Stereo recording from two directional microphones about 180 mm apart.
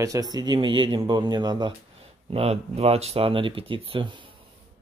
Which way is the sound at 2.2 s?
35° right (ahead or behind).